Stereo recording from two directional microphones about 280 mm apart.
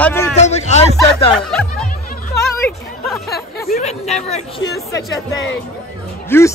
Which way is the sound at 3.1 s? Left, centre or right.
Centre.